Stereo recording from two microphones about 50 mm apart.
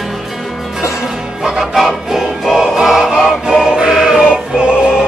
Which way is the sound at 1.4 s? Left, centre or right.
Centre.